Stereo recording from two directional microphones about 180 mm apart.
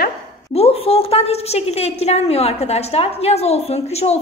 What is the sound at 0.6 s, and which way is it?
A woman's voice, 35° left (ahead or behind).